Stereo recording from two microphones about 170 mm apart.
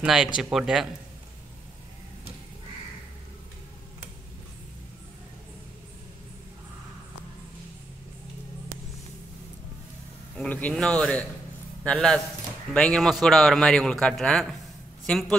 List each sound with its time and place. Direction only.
0.0 s a man's voice: 5° right (ahead or behind)
10.3 s a man's voice: 10° left (ahead or behind)